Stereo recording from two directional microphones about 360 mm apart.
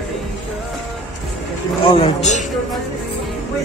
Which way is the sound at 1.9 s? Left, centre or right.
Centre.